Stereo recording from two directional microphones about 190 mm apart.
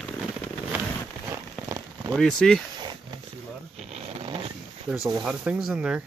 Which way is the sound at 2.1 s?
5° left (ahead or behind).